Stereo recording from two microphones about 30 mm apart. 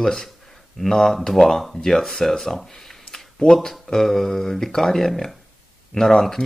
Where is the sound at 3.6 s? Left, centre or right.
Centre.